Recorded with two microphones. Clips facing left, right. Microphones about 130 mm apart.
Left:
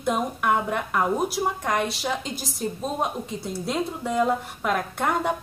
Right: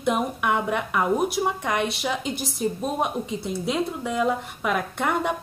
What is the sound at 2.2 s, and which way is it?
Speech, 60° right (ahead or behind).